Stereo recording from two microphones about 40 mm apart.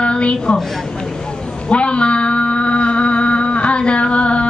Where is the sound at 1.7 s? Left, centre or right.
Left.